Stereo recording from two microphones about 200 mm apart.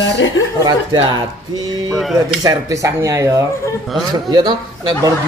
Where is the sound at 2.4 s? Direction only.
15° right (ahead or behind).